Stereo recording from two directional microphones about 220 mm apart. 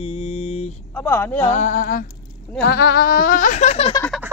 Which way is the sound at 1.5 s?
35° left (ahead or behind).